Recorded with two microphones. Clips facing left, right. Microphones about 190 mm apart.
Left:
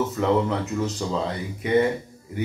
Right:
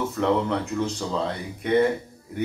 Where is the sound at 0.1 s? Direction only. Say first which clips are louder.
Left 1 dB; 5° left (ahead or behind).